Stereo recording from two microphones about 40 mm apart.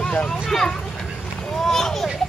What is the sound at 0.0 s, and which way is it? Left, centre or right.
Vehicle, left.